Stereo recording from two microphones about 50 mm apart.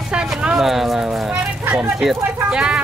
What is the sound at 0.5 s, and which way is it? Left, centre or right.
Speech, centre.